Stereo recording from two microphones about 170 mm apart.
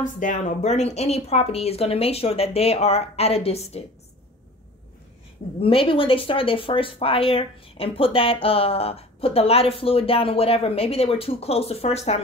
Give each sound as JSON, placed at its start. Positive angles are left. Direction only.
{"t": 0.0, "sound": "speech", "side_deg": 50}
{"t": 5.6, "sound": "speech", "side_deg": 35}